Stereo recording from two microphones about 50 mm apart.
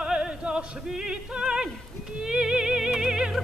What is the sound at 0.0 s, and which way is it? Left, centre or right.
Music, centre.